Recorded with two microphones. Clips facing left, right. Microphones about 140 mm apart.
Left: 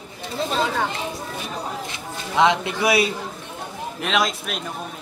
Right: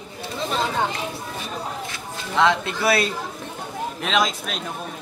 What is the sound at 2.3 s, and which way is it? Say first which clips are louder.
Speech: left 1 dB; 15° left (ahead or behind).